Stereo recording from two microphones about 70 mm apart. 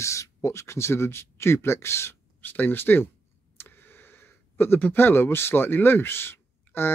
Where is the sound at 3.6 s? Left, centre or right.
Left.